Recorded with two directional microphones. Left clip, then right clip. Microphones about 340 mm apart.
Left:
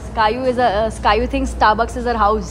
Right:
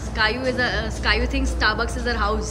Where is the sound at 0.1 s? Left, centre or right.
Centre.